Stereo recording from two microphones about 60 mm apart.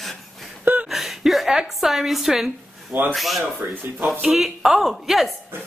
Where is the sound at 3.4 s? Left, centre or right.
Right.